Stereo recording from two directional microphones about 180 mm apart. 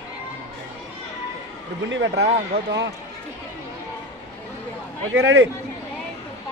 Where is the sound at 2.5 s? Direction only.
65° right (ahead or behind).